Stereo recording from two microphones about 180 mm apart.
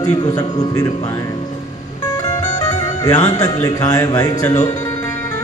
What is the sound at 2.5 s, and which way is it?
Speech, 20° left (ahead or behind).